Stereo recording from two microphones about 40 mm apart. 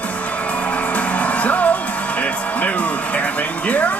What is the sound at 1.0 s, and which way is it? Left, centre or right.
Music, left.